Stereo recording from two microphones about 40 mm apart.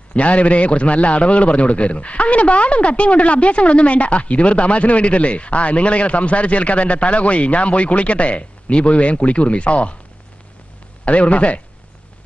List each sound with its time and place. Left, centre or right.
0.1 s a man's voice: left
11.1 s a man's voice: left